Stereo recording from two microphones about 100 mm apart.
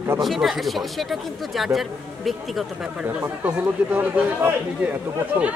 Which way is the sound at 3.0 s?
15° right (ahead or behind).